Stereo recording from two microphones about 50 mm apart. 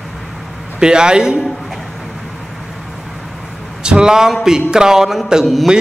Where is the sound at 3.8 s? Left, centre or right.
Centre.